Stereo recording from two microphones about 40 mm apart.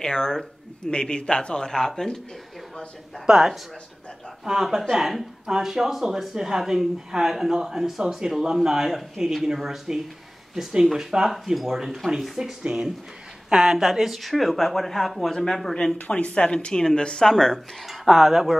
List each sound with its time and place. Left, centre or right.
0.0 s speech: centre
3.3 s speech: centre
13.5 s speech: centre
16.1 s speech: left; by 17.6 s centre
18.0 s speech: centre